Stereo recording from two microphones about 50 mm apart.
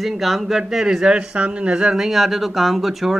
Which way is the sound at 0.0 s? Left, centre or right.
Centre.